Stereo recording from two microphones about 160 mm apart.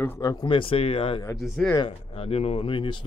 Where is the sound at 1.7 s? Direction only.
35° left (ahead or behind).